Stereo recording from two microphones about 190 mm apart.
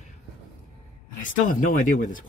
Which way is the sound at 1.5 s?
45° left (ahead or behind).